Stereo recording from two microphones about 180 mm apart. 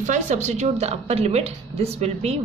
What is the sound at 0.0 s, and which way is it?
Speech, 40° right (ahead or behind).